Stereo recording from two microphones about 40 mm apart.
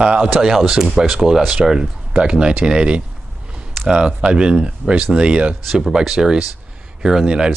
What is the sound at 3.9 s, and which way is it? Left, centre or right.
Speech, right.